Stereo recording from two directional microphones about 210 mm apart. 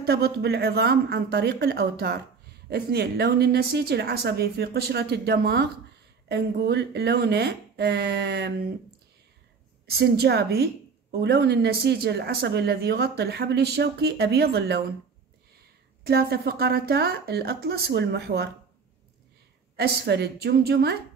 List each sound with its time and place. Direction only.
0.0 s a woman's voice: 50° right (ahead or behind)
9.8 s a woman's voice: 50° right (ahead or behind)
16.0 s a woman's voice: 50° right (ahead or behind)
19.8 s a woman's voice: 50° right (ahead or behind)